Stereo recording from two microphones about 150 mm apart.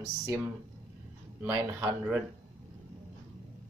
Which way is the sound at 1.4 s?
15° right (ahead or behind).